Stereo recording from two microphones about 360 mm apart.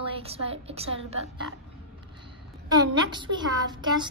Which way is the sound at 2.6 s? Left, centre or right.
Centre.